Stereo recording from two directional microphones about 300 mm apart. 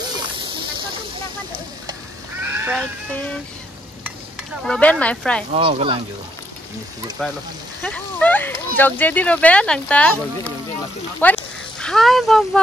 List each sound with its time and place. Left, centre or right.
2.4 s speech: centre
4.6 s speech: centre
5.5 s speech: centre
7.2 s speech: centre
11.2 s speech: centre